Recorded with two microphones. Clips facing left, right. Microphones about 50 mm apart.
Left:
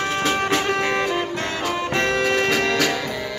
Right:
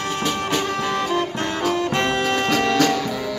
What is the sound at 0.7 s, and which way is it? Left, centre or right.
Music, left.